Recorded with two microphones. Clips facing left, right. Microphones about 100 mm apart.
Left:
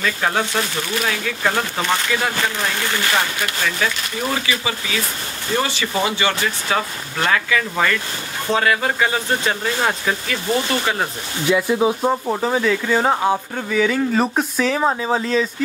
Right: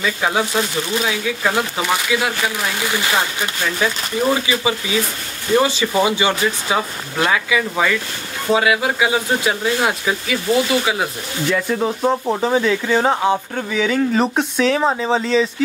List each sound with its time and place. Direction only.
0.0 s speech: 10° right (ahead or behind)
11.4 s speech: 10° left (ahead or behind)